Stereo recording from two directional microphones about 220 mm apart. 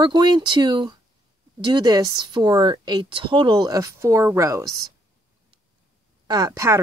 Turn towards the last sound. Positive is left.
turn(degrees=-15)  # may be behind; listen again after turning